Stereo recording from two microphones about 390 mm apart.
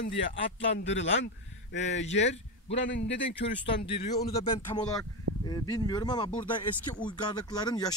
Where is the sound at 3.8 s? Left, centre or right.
Centre.